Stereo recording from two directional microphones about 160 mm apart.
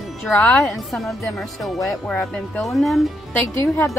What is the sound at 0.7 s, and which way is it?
A woman's voice, centre (ahead or behind).